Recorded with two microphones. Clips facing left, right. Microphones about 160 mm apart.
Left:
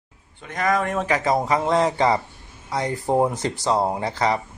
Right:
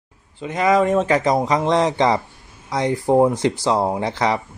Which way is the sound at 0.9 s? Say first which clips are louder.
Right 4 dB; 25° right (ahead or behind).